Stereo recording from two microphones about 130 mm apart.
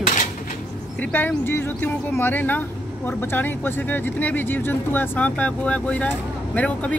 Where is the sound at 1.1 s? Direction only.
15° left (ahead or behind).